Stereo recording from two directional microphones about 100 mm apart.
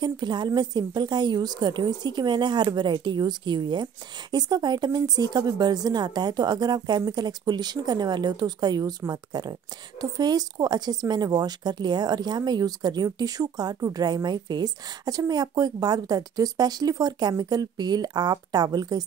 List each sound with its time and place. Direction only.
0.0 s a woman's voice: 45° right (ahead or behind)